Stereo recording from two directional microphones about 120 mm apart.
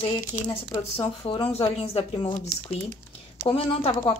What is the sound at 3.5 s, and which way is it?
Speech, 50° left (ahead or behind).